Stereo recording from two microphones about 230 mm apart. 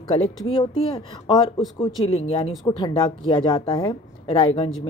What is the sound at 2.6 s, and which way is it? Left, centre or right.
A woman's voice, centre.